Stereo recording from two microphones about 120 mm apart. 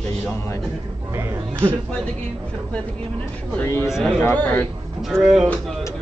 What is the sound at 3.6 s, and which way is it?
Speech, 20° left (ahead or behind).